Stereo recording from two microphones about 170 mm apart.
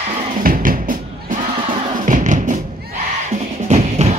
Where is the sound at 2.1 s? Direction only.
50° right (ahead or behind).